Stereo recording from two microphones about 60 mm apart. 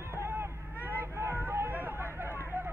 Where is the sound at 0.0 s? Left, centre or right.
Right.